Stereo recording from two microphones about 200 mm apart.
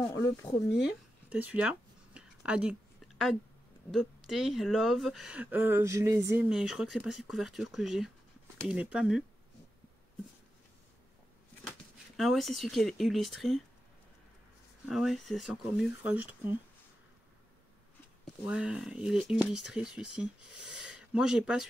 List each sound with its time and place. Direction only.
0.0 s speech: 15° left (ahead or behind)
1.3 s a sound: 5° right (ahead or behind)
3.9 s speech: centre (ahead or behind)
12.2 s speech: centre (ahead or behind)
14.9 s speech: centre (ahead or behind)
18.4 s speech: 5° right (ahead or behind)